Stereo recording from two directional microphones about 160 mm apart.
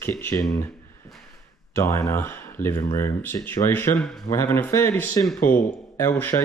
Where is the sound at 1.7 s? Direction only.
15° left (ahead or behind).